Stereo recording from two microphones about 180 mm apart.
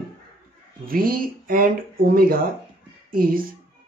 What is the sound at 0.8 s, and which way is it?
A woman's voice, 55° right (ahead or behind).